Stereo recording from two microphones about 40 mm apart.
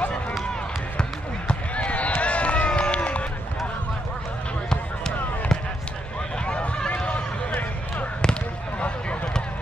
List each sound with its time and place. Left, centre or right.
1.5 s run: left
4.6 s fireworks: centre
6.4 s run: left